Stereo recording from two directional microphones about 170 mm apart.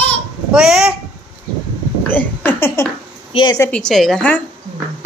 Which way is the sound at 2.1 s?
10° left (ahead or behind).